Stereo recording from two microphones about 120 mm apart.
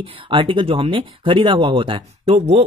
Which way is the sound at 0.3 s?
45° right (ahead or behind).